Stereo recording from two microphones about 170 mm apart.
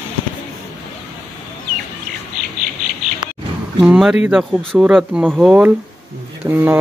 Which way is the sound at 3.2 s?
25° right (ahead or behind).